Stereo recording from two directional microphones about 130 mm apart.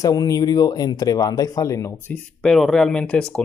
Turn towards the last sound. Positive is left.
turn(degrees=10)  # may be behind; listen again after turning